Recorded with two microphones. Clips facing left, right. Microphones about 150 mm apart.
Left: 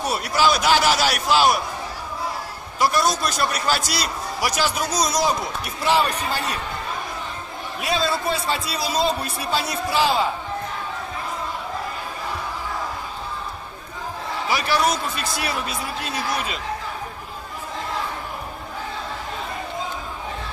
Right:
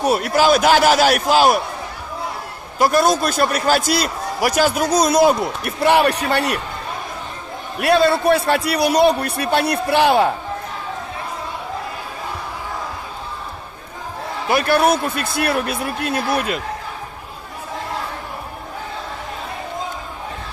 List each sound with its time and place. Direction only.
0.0 s a man's voice: 50° right (ahead or behind)
2.8 s a man's voice: 50° right (ahead or behind); by 6.6 s 70° right (ahead or behind)
7.8 s a man's voice: 60° right (ahead or behind)
14.5 s a man's voice: 55° right (ahead or behind)